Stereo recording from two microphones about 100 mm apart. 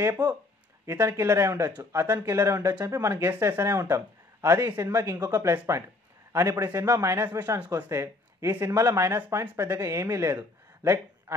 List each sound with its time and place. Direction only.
0.2 s speech: 45° right (ahead or behind)
0.8 s speech: 30° right (ahead or behind)
7.7 s speech: 30° right (ahead or behind)
10.3 s a sound: 25° right (ahead or behind)